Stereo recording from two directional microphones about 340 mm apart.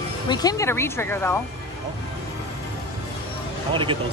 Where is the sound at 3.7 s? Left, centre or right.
Centre.